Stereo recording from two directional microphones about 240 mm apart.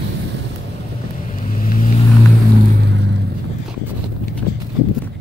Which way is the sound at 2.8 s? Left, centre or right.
Right.